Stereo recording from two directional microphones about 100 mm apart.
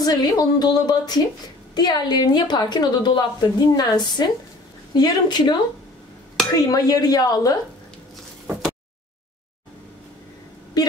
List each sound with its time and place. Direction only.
0.0 s a woman's voice: 40° left (ahead or behind)